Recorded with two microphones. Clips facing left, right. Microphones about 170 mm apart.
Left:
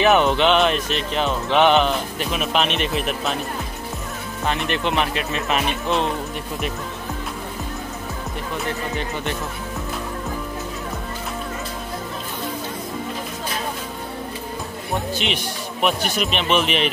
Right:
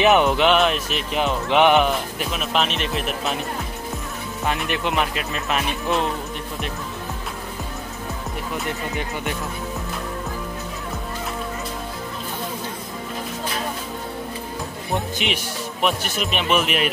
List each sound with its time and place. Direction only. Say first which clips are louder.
0.0 s speech: even; 15° right (ahead or behind); by 3.3 s centre (ahead or behind)
4.5 s speech: left 1 dB; 5° right (ahead or behind)
8.9 s speech: left 1 dB; 10° right (ahead or behind)
15.2 s speech: even; centre (ahead or behind)